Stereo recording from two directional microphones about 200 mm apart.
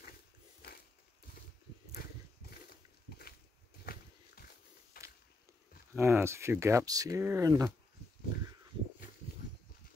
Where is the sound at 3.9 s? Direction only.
50° left (ahead or behind).